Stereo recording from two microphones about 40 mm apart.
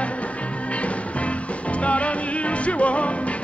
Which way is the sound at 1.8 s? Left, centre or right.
Left.